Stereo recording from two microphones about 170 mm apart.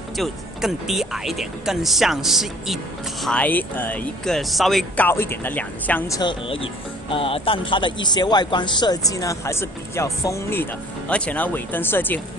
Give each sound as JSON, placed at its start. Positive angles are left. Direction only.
{"t": 0.2, "sound": "speech", "side_deg": 0}
{"t": 6.4, "sound": "speech", "side_deg": 30}